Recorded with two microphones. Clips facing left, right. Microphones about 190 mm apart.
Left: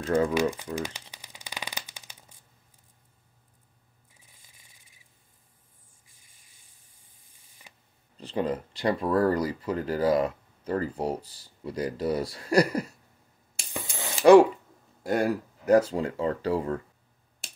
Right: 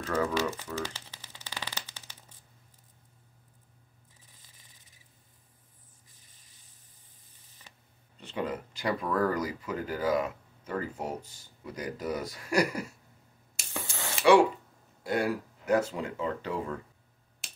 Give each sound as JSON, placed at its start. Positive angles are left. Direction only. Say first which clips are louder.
{"t": 0.0, "sound": "speech", "louder": "left 5 dB", "side_deg": 30}
{"t": 0.3, "sound": "speech", "louder": "left 5 dB", "side_deg": 15}
{"t": 0.7, "sound": "shuffling cards", "louder": "left 3 dB", "side_deg": 15}
{"t": 4.2, "sound": "a sound", "louder": "left 1 dB", "side_deg": 10}
{"t": 6.0, "sound": "camera", "louder": "right 1 dB", "side_deg": 10}
{"t": 8.2, "sound": "speech", "louder": "left 5 dB", "side_deg": 35}
{"t": 13.7, "sound": "spray", "louder": "left 2 dB", "side_deg": 15}
{"t": 15.0, "sound": "speech", "louder": "left 4 dB", "side_deg": 45}